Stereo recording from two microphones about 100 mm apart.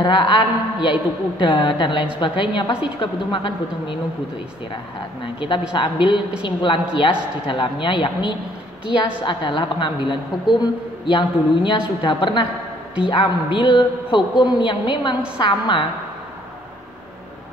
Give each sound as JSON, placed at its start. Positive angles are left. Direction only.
{"t": 0.0, "sound": "a woman's voice", "side_deg": 55}
{"t": 5.2, "sound": "a woman's voice", "side_deg": 55}